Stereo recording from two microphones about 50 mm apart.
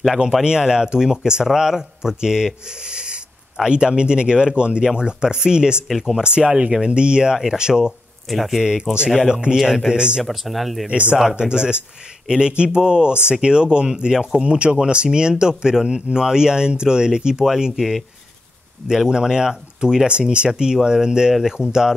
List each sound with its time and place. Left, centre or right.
0.4 s speech: centre
5.9 s speech: centre
6.2 s speech: centre
8.3 s speech: centre
8.5 s speech: centre
10.2 s speech: centre
10.9 s speech: right
11.1 s speech: centre